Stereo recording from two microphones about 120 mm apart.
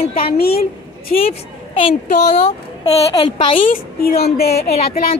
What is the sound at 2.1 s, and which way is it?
Speech, 70° left (ahead or behind).